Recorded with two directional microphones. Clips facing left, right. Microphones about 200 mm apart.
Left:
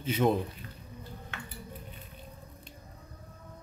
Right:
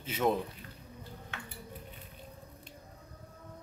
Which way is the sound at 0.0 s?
Centre (ahead or behind).